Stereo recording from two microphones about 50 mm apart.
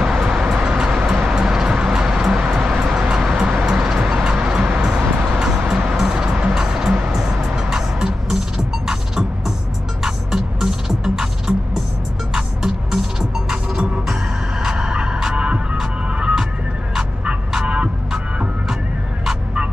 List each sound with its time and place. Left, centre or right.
0.0 s vehicle: centre
0.7 s music: centre
2.8 s vehicle: centre
3.3 s music: right